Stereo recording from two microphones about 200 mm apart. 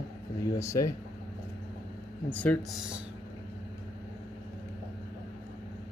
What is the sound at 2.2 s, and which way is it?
Speech, 10° left (ahead or behind).